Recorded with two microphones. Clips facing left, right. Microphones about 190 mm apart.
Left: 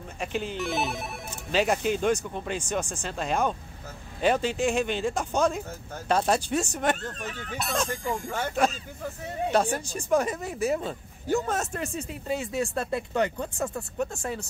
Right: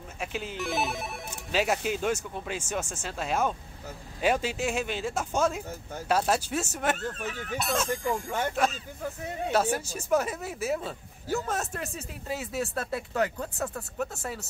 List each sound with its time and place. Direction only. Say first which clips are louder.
0.2 s speech: left 3 dB; 5° right (ahead or behind)